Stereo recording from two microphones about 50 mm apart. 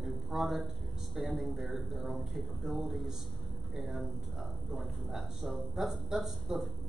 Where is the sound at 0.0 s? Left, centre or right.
Centre.